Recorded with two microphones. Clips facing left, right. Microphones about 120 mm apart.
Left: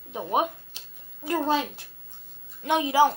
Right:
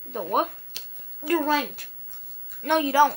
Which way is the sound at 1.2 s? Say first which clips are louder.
Right 2 dB; 20° left (ahead or behind).